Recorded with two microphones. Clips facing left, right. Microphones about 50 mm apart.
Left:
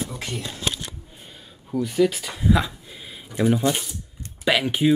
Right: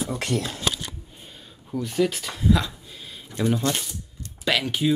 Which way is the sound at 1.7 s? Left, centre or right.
Centre.